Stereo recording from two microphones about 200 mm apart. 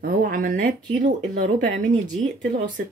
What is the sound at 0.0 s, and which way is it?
Speech, 45° right (ahead or behind).